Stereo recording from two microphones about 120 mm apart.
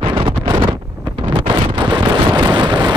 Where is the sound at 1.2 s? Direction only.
40° right (ahead or behind).